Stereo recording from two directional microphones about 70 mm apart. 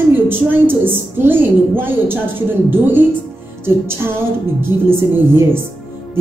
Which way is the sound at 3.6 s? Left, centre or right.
Right.